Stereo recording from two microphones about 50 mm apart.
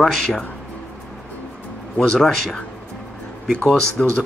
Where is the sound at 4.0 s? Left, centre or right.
Centre.